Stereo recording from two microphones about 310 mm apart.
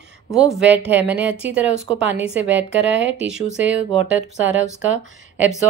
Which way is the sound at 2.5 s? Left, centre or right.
Right.